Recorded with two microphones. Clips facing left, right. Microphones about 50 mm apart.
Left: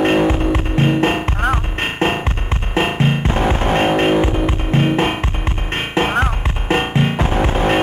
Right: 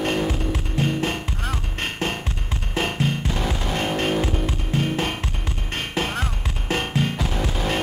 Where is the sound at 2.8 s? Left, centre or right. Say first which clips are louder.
Left 7 dB; left.